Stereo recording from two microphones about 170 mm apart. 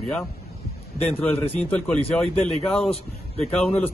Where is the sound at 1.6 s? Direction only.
5° left (ahead or behind).